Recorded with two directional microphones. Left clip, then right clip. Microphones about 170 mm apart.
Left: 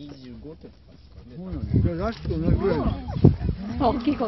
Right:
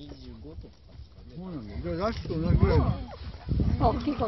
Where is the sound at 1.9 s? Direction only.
45° right (ahead or behind).